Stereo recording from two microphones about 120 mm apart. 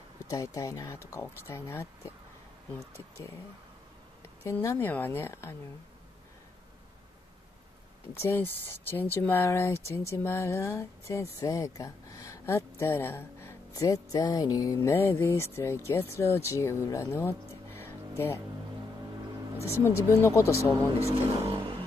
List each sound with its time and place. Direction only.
0.3 s speech: 30° left (ahead or behind)
4.5 s speech: 25° left (ahead or behind)
8.2 s speech: 20° left (ahead or behind)
19.6 s speech: 20° left (ahead or behind)
21.0 s speech: 50° right (ahead or behind)